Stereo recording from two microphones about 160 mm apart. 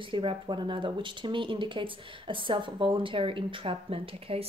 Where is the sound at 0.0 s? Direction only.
30° right (ahead or behind).